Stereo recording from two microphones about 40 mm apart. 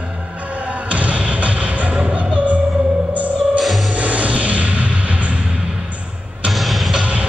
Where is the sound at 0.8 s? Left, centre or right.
Right.